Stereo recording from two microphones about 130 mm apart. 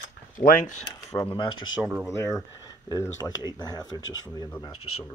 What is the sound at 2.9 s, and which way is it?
Speech, 25° left (ahead or behind).